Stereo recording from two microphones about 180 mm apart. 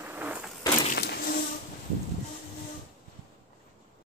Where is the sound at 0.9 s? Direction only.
60° left (ahead or behind).